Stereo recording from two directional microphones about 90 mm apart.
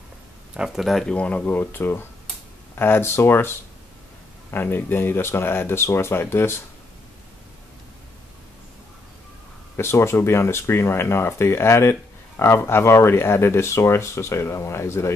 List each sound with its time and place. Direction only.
0.6 s speech: centre (ahead or behind)
1.1 s speech: 15° left (ahead or behind)
9.8 s speech: 30° left (ahead or behind)